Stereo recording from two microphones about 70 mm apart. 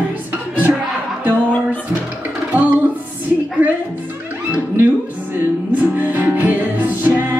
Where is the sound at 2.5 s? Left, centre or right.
Right.